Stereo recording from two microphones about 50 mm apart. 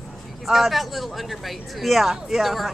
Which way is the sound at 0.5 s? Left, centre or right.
Centre.